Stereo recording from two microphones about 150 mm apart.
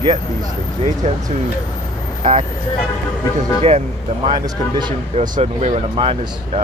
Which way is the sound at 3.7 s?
45° right (ahead or behind).